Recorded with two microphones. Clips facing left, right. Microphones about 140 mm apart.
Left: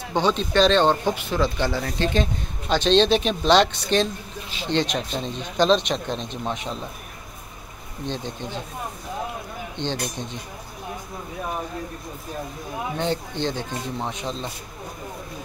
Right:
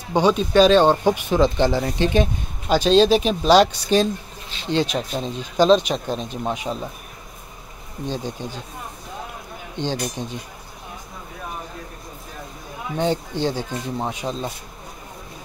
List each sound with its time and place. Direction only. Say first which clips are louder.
0.1 s speech: right 4 dB; 10° right (ahead or behind)
2.7 s speech: right 3 dB; 5° right (ahead or behind)
8.1 s speech: right 2 dB; 10° right (ahead or behind)
9.8 s speech: right 3 dB; 10° right (ahead or behind)
12.9 s speech: right 5 dB; 15° right (ahead or behind)